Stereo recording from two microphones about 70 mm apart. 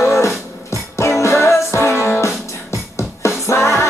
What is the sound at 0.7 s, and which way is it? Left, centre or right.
Music, left.